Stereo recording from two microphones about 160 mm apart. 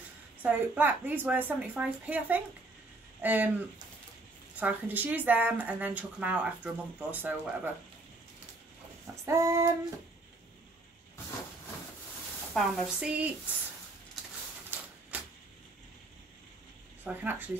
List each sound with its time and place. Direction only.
0.4 s speech: 10° right (ahead or behind)
4.6 s speech: 10° right (ahead or behind)
9.2 s child singing: 20° right (ahead or behind)
12.5 s speech: centre (ahead or behind)
14.7 s a sound: 10° right (ahead or behind)
17.0 s speech: 10° right (ahead or behind)